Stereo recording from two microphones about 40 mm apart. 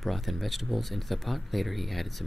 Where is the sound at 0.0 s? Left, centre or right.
Centre.